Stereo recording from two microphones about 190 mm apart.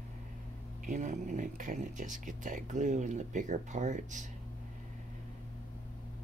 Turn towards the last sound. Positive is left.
turn(degrees=-40)  # may be behind; listen again after turning